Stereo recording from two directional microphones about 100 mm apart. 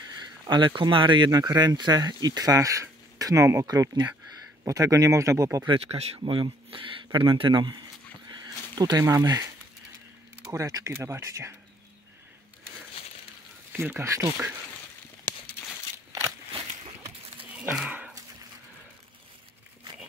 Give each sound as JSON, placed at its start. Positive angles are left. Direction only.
{"t": 0.5, "sound": "speech", "side_deg": -50}
{"t": 1.3, "sound": "speech", "side_deg": -40}
{"t": 5.7, "sound": "speech", "side_deg": -85}
{"t": 6.2, "sound": "speech", "side_deg": -60}
{"t": 8.3, "sound": "a sound", "side_deg": -45}
{"t": 9.0, "sound": "speech", "side_deg": -35}
{"t": 13.7, "sound": "speech", "side_deg": -25}
{"t": 16.1, "sound": "a sound", "side_deg": -30}
{"t": 17.5, "sound": "a sound", "side_deg": -15}